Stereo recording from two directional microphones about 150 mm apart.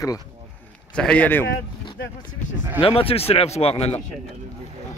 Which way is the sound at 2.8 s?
40° left (ahead or behind).